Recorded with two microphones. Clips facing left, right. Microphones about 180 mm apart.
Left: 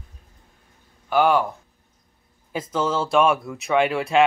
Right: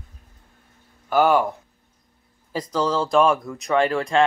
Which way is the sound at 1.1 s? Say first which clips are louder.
Right 1 dB; 45° right (ahead or behind).